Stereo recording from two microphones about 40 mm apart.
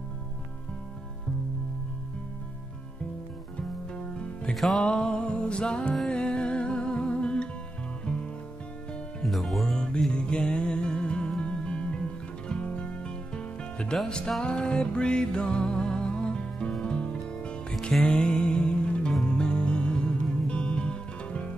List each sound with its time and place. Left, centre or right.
3.5 s music: left
9.2 s music: centre
9.8 s music: left